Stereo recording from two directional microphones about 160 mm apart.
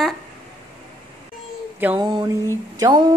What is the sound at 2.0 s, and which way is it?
Mantra, 25° right (ahead or behind).